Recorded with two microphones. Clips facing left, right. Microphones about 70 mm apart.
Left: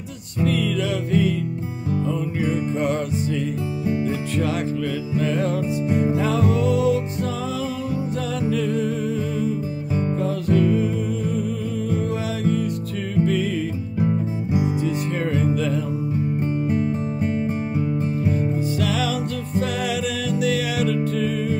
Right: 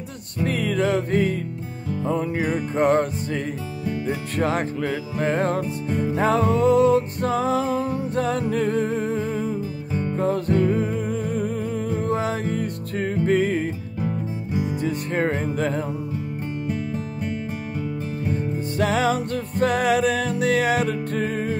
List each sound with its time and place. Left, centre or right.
0.4 s music: right
4.1 s music: right
14.9 s music: right
18.8 s music: right